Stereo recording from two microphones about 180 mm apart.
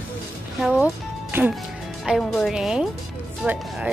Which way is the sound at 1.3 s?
10° right (ahead or behind).